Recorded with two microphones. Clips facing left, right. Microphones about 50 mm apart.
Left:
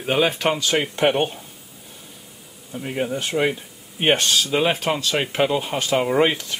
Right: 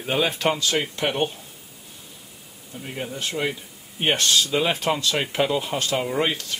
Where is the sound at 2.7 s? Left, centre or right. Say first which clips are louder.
Left 7 dB; left.